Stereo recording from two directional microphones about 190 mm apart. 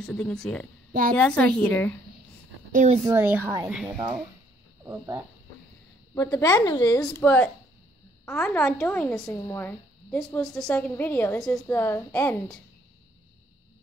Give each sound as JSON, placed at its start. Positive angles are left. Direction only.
{"t": 0.0, "sound": "a woman's voice", "side_deg": 5}
{"t": 2.7, "sound": "a woman's voice", "side_deg": -40}
{"t": 3.1, "sound": "a woman's voice", "side_deg": -10}
{"t": 4.8, "sound": "a woman's voice", "side_deg": -15}
{"t": 6.1, "sound": "speech", "side_deg": 15}
{"t": 7.0, "sound": "a woman's voice", "side_deg": 10}